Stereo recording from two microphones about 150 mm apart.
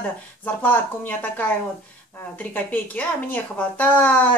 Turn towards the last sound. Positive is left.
turn(degrees=10)  # may be behind; listen again after turning